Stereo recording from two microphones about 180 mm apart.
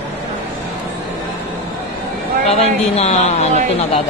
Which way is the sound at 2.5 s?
35° left (ahead or behind).